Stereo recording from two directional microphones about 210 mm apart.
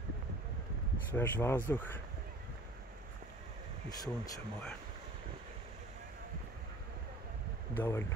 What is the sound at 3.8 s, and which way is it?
Speech, 15° left (ahead or behind).